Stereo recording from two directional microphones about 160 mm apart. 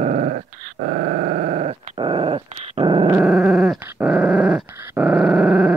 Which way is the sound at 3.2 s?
5° right (ahead or behind).